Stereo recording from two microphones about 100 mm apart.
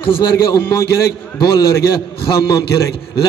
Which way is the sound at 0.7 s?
35° left (ahead or behind).